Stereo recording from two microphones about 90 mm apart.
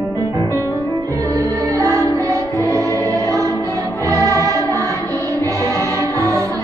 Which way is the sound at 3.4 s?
35° left (ahead or behind).